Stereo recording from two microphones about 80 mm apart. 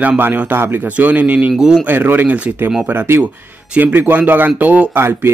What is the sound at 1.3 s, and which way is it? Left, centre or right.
Speech, centre.